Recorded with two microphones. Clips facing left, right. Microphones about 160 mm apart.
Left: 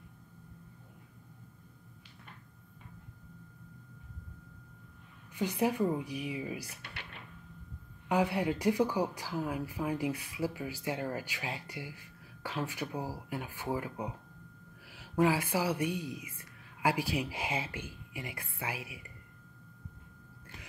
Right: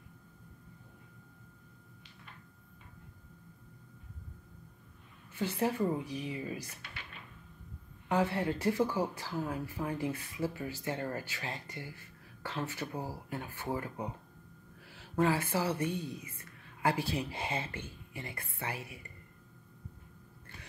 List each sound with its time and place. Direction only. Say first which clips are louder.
5.3 s speech: left 2 dB; 15° left (ahead or behind)
6.8 s a sound: left 2 dB; 70° left (ahead or behind)
8.1 s speech: left 1 dB; 10° left (ahead or behind)